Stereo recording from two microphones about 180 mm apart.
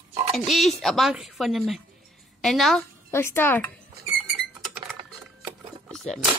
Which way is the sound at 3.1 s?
15° left (ahead or behind).